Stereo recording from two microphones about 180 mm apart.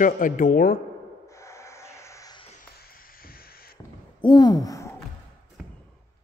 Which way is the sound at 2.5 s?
55° left (ahead or behind).